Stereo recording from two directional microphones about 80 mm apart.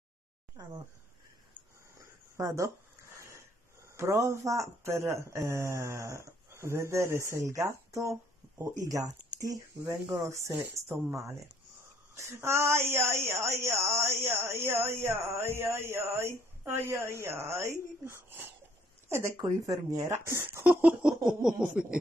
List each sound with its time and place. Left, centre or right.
0.6 s speech: right
2.0 s a sound: right
5.5 s speech: right
19.3 s speech: right
20.6 s a sound: centre
21.2 s speech: centre